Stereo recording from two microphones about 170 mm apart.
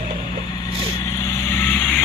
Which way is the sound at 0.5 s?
20° left (ahead or behind).